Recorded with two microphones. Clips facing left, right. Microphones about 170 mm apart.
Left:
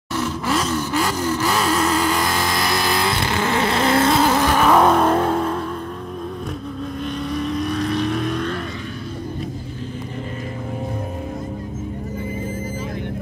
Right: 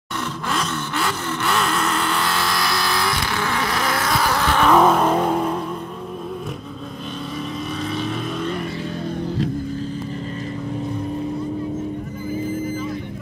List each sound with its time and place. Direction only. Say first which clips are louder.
0.2 s a sound: left 4 dB; 5° left (ahead or behind)
1.0 s vehicle: left 3 dB; 10° left (ahead or behind); by 5.6 s 10° right (ahead or behind)
7.5 s vehicle: left 4 dB; centre (ahead or behind)